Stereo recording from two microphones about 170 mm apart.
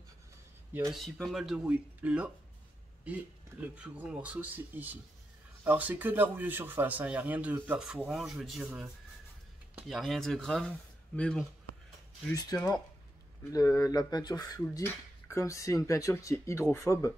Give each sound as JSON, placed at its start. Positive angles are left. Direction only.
{"t": 0.9, "sound": "speech", "side_deg": 0}
{"t": 3.6, "sound": "speech", "side_deg": -10}
{"t": 12.4, "sound": "speech", "side_deg": 15}